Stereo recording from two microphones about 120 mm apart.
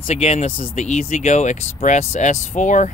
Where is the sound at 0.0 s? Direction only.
60° left (ahead or behind); by 2.9 s 90° left.